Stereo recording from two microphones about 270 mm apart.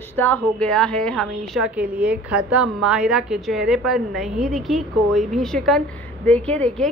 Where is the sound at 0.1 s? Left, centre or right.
Centre.